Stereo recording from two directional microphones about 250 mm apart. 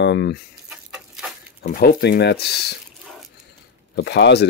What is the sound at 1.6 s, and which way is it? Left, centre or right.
Speech, left.